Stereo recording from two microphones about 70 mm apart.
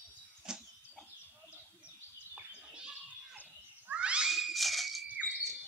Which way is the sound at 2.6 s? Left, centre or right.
Centre.